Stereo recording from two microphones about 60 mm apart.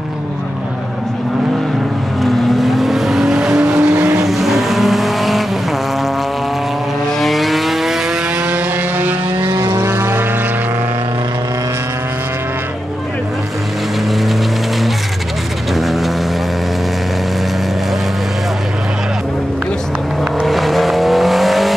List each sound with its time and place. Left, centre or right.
2.6 s vehicle: centre; by 4.1 s right
4.3 s vehicle: centre
7.2 s vehicle: centre
8.5 s vehicle: right
9.5 s vehicle: right
9.8 s vehicle: right
15.7 s vehicle: centre
20.4 s vehicle: centre